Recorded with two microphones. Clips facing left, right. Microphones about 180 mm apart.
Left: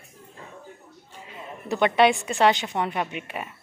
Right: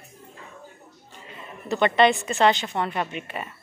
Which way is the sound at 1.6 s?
10° left (ahead or behind).